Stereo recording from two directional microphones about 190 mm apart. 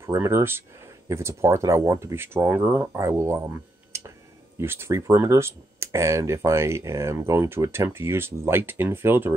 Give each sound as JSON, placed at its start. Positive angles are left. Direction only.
{"t": 0.0, "sound": "speech", "side_deg": -15}